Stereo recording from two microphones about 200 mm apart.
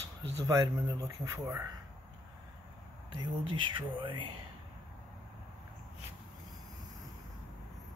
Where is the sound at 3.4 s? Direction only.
25° right (ahead or behind).